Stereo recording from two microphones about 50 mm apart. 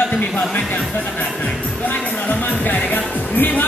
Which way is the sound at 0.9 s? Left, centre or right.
Left.